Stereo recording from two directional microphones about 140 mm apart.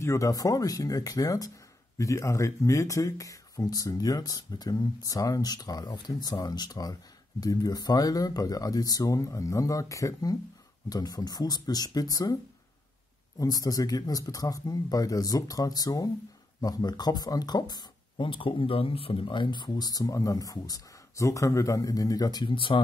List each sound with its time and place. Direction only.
0.0 s speech: 20° left (ahead or behind)
13.4 s speech: 25° left (ahead or behind)